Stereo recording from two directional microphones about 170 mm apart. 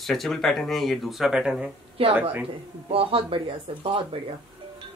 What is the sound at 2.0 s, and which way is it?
Speech, 35° right (ahead or behind).